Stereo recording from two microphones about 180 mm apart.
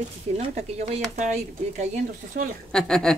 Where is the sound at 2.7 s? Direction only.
5° left (ahead or behind).